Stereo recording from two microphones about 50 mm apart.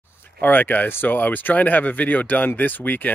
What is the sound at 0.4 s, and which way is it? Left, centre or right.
Speech, left.